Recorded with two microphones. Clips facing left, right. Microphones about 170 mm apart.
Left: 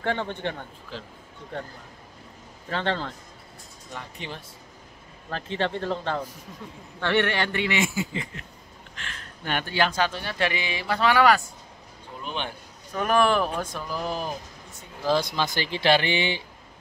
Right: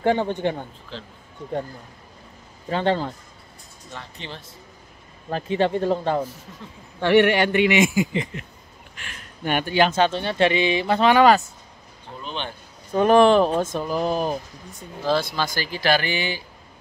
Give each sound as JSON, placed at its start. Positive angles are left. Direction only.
{"t": 0.0, "sound": "a man's voice", "side_deg": -15}
{"t": 2.7, "sound": "a man's voice", "side_deg": -15}
{"t": 3.9, "sound": "speech", "side_deg": 10}
{"t": 5.3, "sound": "a man's voice", "side_deg": -10}
{"t": 12.2, "sound": "speech", "side_deg": 10}
{"t": 12.9, "sound": "speech", "side_deg": -25}
{"t": 15.0, "sound": "speech", "side_deg": 15}